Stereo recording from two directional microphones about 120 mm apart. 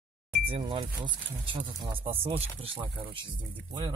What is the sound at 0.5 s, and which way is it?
Speech, 45° right (ahead or behind).